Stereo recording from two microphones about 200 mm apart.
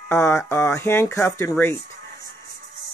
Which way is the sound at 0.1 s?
15° left (ahead or behind).